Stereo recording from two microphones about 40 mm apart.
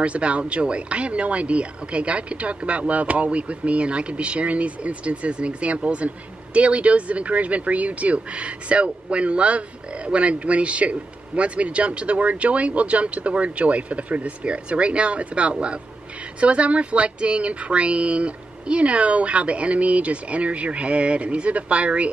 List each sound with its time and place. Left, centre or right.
0.0 s speech: right